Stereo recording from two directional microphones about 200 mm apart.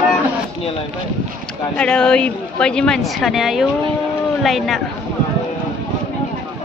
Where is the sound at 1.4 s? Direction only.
5° left (ahead or behind).